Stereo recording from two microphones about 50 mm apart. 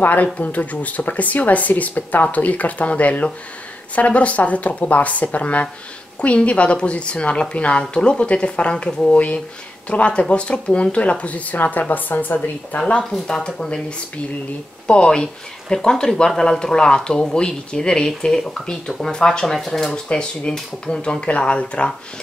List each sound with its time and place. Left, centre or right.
0.0 s speech: left
13.0 s speech: centre
13.6 s speech: centre
20.1 s speech: centre